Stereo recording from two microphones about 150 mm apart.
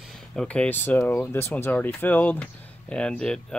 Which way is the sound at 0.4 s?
5° left (ahead or behind).